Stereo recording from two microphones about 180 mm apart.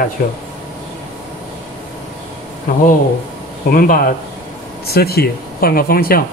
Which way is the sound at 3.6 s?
55° left (ahead or behind).